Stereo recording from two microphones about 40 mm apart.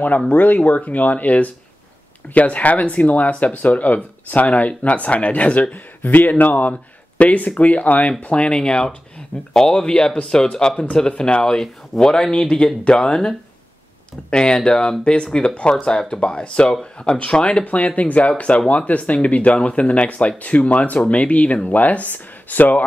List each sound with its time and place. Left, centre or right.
0.4 s speech: left
6.7 s speech: left
8.3 s speech: left
11.4 s speech: centre
14.3 s speech: left
17.6 s speech: left